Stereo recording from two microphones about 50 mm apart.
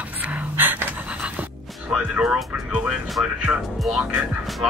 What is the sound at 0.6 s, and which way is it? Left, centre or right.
Pant, right.